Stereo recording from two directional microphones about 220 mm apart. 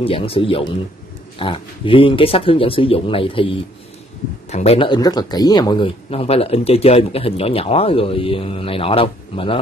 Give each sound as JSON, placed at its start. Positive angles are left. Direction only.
{"t": 0.0, "sound": "speech", "side_deg": 25}